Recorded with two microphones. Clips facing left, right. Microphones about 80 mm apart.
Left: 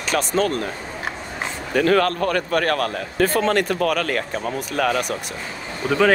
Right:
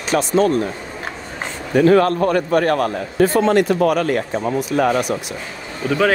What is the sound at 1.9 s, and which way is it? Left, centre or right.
Speech, right.